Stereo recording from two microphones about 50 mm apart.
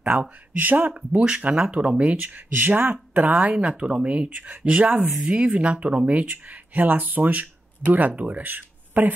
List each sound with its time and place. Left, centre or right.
0.0 s speech: right
2.3 s speech: right
3.5 s speech: right